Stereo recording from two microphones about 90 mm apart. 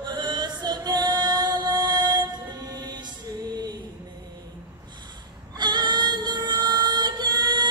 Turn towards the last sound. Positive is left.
turn(degrees=-55)  # may be behind; listen again after turning